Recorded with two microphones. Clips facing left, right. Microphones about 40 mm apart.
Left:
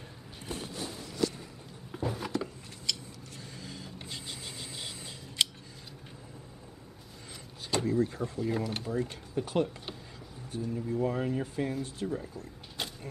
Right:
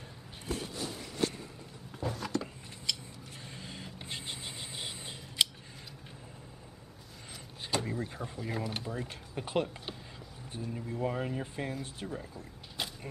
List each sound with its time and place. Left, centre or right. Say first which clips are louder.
1.9 s a sound: left 2 dB; centre
2.9 s mechanisms: left 1 dB; centre
3.5 s vehicle: left 1 dB; right
5.4 s scissors: even; centre
7.8 s speech: left 8 dB; centre
12.8 s vehicle: even; centre